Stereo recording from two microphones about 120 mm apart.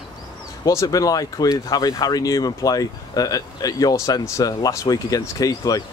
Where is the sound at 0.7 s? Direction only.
30° left (ahead or behind).